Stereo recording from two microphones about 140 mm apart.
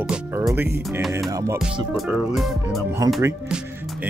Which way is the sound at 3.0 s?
25° right (ahead or behind).